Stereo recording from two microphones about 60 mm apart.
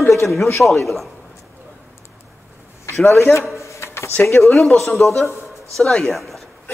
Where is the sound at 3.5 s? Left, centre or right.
Left.